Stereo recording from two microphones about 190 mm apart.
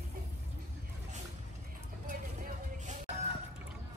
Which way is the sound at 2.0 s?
40° right (ahead or behind).